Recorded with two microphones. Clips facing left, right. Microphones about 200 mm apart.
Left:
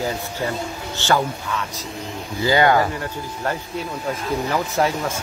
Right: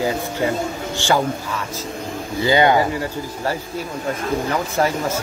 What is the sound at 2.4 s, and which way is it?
Speech, 20° right (ahead or behind).